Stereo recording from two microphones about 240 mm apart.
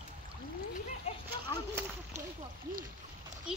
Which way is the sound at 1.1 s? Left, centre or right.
Left.